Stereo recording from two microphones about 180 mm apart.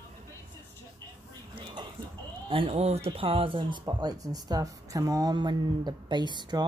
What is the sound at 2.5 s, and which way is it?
Speech, 30° right (ahead or behind).